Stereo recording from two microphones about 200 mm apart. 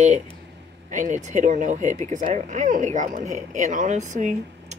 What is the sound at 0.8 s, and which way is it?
Speech, 35° right (ahead or behind).